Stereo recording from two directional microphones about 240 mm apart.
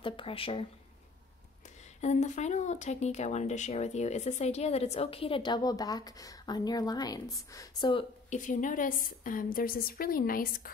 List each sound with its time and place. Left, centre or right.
0.0 s speech: left
2.0 s speech: left